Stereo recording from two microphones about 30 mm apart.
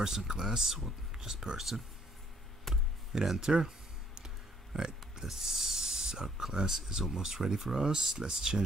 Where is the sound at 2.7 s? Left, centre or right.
Centre.